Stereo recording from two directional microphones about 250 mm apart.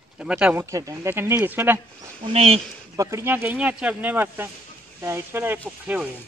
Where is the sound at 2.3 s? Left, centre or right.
Right.